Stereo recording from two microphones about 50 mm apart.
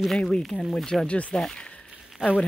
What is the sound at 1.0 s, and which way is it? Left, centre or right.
Speech, left.